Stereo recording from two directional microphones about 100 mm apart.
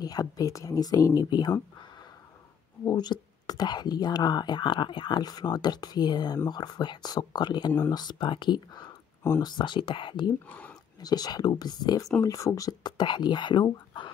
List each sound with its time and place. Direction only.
0.0 s speech: 40° left (ahead or behind)
2.8 s speech: 40° left (ahead or behind)
10.5 s speech: 15° left (ahead or behind)
11.0 s speech: 40° left (ahead or behind)
12.2 s speech: 30° left (ahead or behind); by 13.7 s 50° left (ahead or behind)